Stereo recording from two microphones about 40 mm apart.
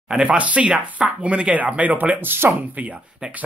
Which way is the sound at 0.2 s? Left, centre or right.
Right.